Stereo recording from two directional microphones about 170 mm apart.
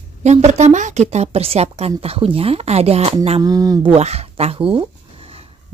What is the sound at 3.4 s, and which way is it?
Speech, 20° right (ahead or behind).